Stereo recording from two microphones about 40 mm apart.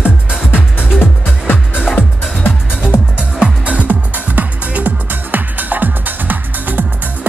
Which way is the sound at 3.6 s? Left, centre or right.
Right.